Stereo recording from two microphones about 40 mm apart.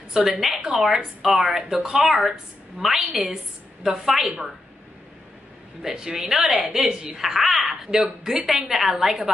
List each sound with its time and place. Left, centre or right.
0.2 s a woman's voice: centre
2.0 s a woman's voice: centre
5.8 s a woman's voice: centre